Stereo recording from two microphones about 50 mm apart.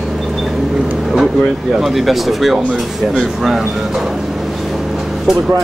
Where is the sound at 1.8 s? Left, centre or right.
Centre.